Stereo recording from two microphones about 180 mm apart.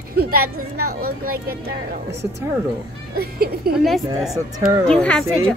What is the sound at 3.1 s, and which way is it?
Speech, 55° right (ahead or behind).